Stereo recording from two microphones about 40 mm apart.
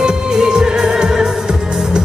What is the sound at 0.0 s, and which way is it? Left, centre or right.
Music, centre.